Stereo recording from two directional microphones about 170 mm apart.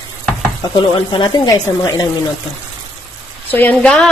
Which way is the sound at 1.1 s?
25° left (ahead or behind).